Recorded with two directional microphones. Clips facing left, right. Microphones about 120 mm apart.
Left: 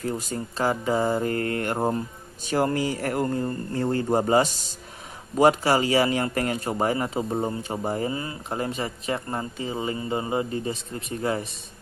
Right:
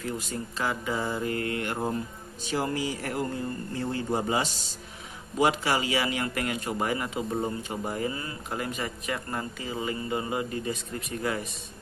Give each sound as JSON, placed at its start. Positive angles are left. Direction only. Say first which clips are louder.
{"t": 0.0, "sound": "a man's voice", "louder": "left 4 dB", "side_deg": 40}